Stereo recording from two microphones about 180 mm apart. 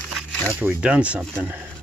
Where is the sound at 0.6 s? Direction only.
5° right (ahead or behind).